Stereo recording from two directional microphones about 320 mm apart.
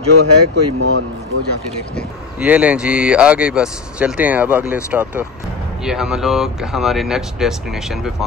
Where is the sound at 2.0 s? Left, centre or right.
Centre.